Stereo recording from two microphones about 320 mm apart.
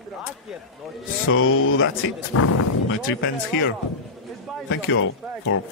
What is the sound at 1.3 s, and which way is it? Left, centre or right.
Speech, left.